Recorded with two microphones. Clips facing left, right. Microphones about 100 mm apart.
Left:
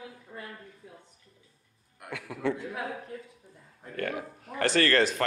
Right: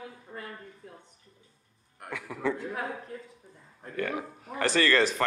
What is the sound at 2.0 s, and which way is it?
Speech, centre (ahead or behind).